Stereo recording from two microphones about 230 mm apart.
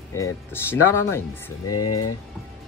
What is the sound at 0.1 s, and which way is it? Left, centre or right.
Speech, centre.